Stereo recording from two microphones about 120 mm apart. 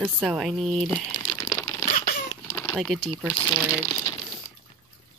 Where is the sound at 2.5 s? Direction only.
15° left (ahead or behind).